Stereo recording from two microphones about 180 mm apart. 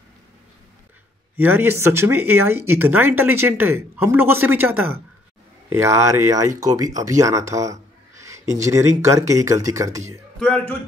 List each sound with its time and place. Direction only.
1.3 s speech: 10° right (ahead or behind)
10.4 s a man's voice: 10° left (ahead or behind)